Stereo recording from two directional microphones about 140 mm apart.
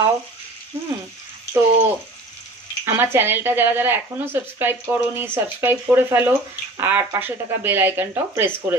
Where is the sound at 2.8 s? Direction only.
15° right (ahead or behind).